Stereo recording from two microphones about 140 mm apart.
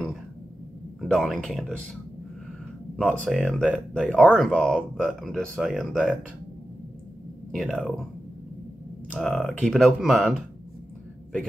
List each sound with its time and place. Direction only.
1.0 s speech: centre (ahead or behind)
3.0 s speech: 5° left (ahead or behind)
7.5 s speech: centre (ahead or behind)
9.1 s speech: 5° left (ahead or behind)